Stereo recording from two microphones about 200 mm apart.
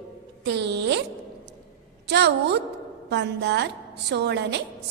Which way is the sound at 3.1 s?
60° right (ahead or behind).